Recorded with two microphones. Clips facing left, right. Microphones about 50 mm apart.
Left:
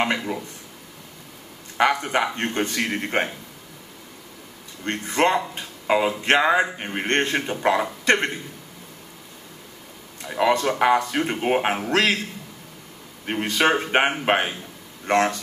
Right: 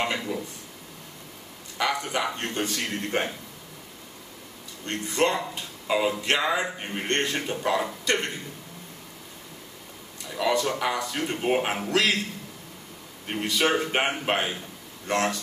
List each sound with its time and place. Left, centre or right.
0.0 s speech: left
1.8 s speech: left
4.8 s speech: left
10.2 s speech: left
13.3 s speech: left